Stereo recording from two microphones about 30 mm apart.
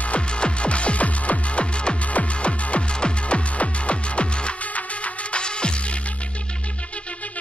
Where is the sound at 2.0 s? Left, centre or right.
Left.